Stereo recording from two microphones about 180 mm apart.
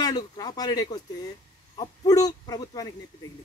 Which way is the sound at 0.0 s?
20° left (ahead or behind).